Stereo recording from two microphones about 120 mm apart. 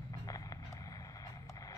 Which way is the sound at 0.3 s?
30° left (ahead or behind).